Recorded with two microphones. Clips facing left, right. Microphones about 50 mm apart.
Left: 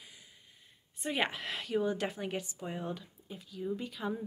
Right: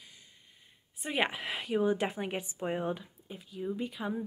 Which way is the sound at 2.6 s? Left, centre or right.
Right.